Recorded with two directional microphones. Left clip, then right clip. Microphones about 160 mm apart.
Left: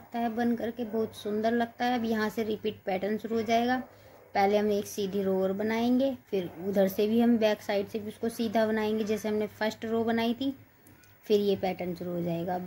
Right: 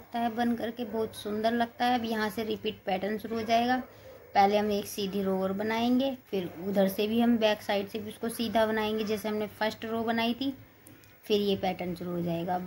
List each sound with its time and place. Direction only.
0.1 s a woman's voice: 40° left (ahead or behind)